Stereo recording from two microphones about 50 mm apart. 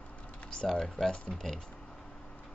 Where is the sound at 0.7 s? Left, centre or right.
Centre.